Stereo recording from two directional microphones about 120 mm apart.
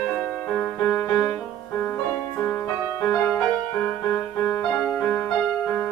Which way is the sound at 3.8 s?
20° left (ahead or behind).